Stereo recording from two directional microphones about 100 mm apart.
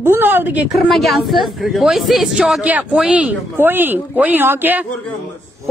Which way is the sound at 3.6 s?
20° right (ahead or behind).